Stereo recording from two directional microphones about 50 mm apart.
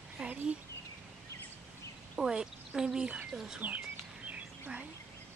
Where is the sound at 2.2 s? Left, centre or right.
Centre.